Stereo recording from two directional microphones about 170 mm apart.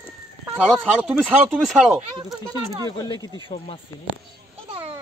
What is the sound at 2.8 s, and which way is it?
Speech, 20° left (ahead or behind).